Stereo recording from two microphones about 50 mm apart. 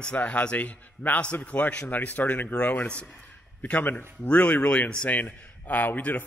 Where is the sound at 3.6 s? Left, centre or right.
Left.